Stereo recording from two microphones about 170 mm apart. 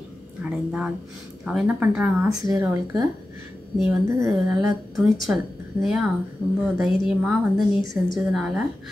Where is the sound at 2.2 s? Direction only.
20° right (ahead or behind).